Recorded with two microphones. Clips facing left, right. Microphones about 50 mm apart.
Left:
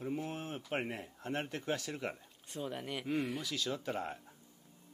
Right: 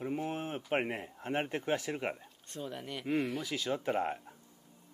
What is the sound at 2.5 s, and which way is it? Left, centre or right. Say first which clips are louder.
Speech: left 1 dB; centre.